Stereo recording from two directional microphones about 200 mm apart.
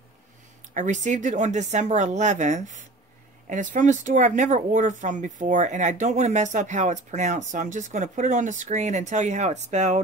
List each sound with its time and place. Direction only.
0.7 s speech: 40° right (ahead or behind)